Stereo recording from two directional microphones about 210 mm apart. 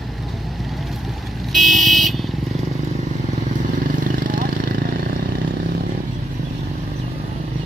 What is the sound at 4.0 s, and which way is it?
Vehicle, 40° right (ahead or behind).